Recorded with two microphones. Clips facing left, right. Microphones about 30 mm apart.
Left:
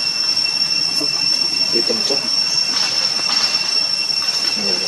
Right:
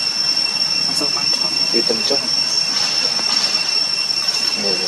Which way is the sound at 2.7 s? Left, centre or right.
Centre.